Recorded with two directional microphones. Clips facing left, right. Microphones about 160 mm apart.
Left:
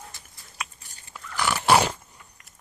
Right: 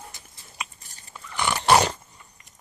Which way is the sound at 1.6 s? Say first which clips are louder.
Right 1 dB; 5° left (ahead or behind).